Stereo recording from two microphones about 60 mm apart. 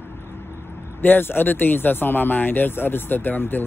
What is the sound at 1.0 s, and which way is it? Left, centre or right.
Speech, left.